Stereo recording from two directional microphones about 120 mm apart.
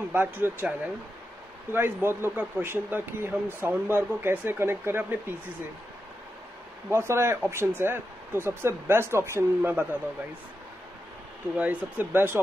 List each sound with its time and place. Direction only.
0.1 s speech: 15° right (ahead or behind)
6.9 s speech: 20° right (ahead or behind)
11.5 s speech: 15° right (ahead or behind)